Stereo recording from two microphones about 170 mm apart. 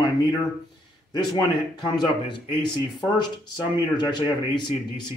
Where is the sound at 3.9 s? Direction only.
25° left (ahead or behind).